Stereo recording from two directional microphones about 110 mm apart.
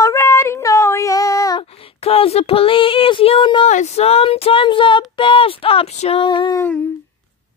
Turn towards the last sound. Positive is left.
turn(degrees=20)  # may be behind; listen again after turning